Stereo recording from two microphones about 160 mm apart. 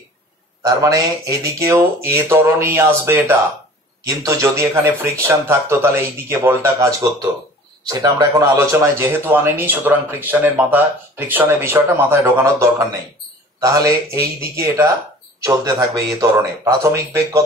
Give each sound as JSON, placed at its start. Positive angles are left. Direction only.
{"t": 0.6, "sound": "a man's voice", "side_deg": -20}